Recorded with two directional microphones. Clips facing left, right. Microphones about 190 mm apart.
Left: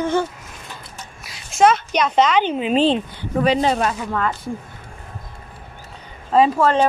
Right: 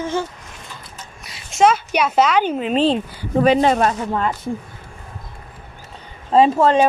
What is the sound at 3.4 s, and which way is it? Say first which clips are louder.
Speech: right 3 dB; 55° right (ahead or behind).